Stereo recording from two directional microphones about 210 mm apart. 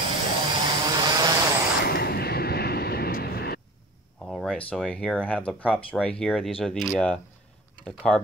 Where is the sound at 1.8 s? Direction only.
45° left (ahead or behind).